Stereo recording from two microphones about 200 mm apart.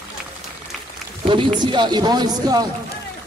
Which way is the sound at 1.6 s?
20° right (ahead or behind).